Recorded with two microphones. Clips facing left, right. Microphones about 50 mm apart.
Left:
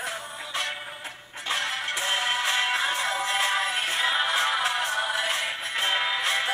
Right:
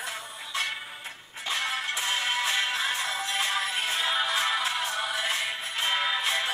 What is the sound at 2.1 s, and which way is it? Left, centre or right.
Music, left.